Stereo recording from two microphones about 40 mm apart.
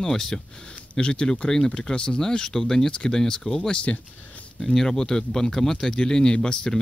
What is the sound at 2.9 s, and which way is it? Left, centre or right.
Speech, left.